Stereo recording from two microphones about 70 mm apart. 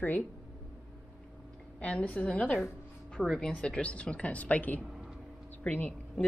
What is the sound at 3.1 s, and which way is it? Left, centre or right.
A woman's voice, centre.